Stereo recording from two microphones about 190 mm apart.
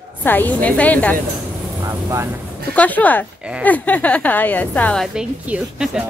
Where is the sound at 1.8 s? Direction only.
15° right (ahead or behind).